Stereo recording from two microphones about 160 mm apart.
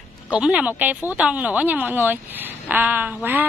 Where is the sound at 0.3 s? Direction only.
10° right (ahead or behind).